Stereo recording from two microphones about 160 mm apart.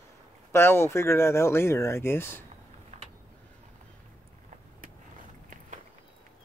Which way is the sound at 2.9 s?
45° right (ahead or behind).